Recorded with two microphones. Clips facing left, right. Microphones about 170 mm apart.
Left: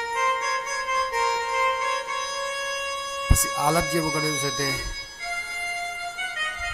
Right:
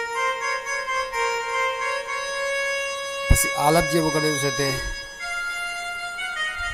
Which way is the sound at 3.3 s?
30° right (ahead or behind).